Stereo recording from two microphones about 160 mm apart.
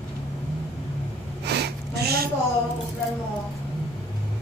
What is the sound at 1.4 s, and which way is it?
Gasp, 90° right.